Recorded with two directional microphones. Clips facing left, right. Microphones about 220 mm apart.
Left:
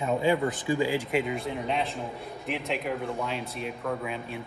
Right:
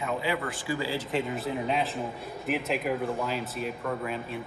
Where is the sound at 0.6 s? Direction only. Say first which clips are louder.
Left 4 dB; 15° left (ahead or behind).